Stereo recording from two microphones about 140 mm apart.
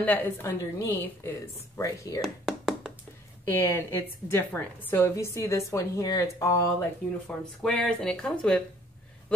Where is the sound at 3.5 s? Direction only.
15° left (ahead or behind).